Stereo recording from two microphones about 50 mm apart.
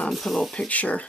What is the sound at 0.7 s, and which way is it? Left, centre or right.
Speech, left.